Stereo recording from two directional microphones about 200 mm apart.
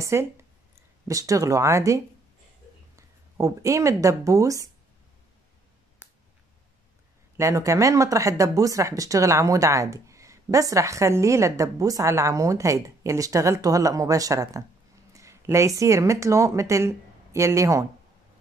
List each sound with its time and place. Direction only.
0.0 s speech: 15° right (ahead or behind)
7.3 s speech: 15° right (ahead or behind)